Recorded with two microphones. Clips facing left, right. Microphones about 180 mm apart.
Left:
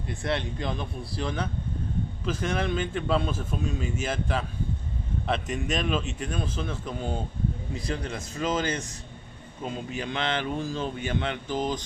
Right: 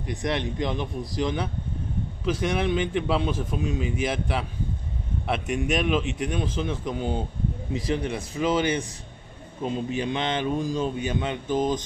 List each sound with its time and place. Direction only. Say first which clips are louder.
0.0 s a man's voice: right 2 dB; 15° right (ahead or behind)
9.9 s a man's voice: even; 20° right (ahead or behind)